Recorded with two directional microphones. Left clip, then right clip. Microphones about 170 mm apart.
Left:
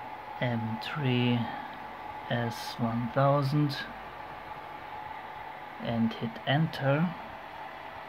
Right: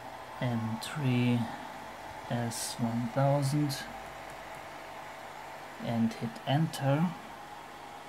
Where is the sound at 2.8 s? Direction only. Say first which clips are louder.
Left 3 dB; 20° left (ahead or behind).